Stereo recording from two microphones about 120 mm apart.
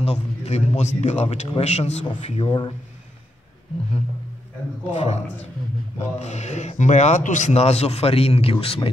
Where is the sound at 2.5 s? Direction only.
45° left (ahead or behind).